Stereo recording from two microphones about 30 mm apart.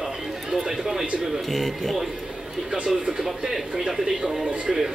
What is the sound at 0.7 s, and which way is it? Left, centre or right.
Speech, centre.